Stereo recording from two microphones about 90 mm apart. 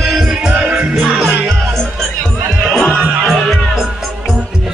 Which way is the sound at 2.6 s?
5° left (ahead or behind).